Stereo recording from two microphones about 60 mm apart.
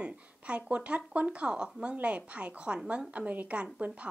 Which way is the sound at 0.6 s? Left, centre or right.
Centre.